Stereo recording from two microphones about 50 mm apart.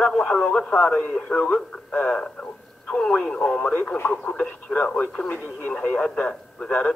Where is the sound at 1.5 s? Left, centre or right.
Left.